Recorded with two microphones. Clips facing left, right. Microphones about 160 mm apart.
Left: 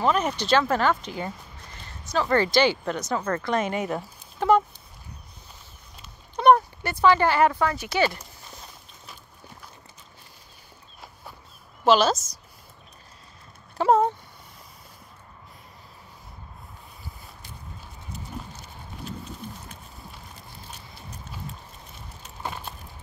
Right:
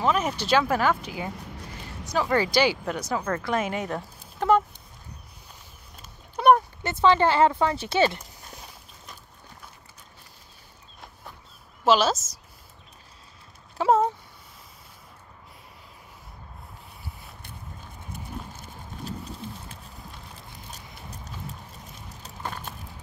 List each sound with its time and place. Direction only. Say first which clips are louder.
0.0 s speech: left 1 dB; 5° right (ahead or behind)
6.3 s a sound: left 1 dB; 5° right (ahead or behind)
6.8 s speech: even; 25° right (ahead or behind)
11.8 s speech: left 1 dB; 5° right (ahead or behind)
13.7 s speech: left 1 dB; centre (ahead or behind)
18.1 s horse: even; 50° right (ahead or behind)
22.4 s vehicle: left 1 dB; 10° left (ahead or behind)